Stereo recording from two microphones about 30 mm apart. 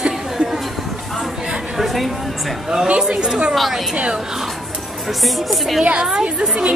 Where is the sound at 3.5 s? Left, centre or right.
Centre.